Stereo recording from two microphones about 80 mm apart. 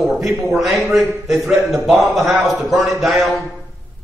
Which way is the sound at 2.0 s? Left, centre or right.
Right.